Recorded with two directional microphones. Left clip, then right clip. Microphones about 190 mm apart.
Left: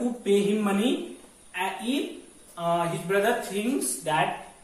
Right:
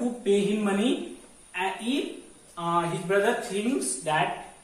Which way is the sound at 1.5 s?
Centre (ahead or behind).